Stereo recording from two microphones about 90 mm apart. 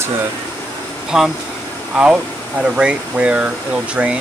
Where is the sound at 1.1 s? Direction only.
5° right (ahead or behind).